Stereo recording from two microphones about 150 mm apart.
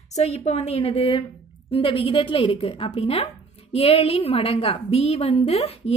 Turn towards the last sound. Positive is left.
turn(degrees=45)  # may be behind; listen again after turning